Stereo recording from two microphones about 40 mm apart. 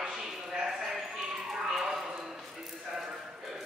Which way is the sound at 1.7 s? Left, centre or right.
Centre.